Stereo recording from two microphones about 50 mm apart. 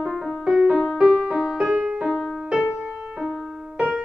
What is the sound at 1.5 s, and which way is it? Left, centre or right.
Music, centre.